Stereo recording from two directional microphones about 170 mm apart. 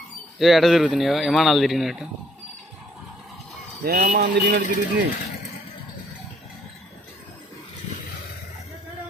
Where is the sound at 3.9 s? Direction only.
60° right (ahead or behind).